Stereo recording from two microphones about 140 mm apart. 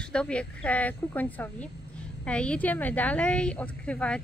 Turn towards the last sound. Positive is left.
turn(degrees=10)  # may be behind; listen again after turning